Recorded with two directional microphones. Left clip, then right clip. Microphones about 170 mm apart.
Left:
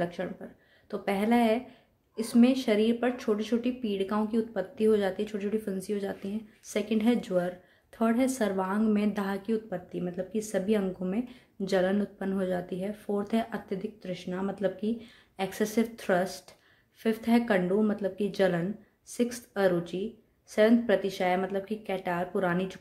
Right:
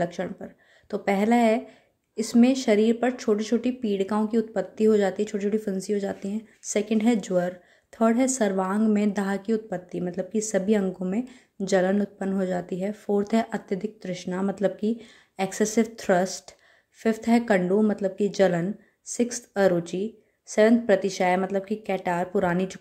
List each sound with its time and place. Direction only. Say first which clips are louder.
0.0 s speech: right 4 dB; 30° right (ahead or behind)